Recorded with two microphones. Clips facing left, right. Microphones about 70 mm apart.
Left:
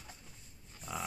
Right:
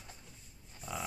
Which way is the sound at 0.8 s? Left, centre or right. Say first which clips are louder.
Even; centre.